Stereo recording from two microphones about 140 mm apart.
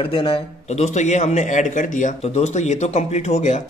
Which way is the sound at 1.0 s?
55° left (ahead or behind).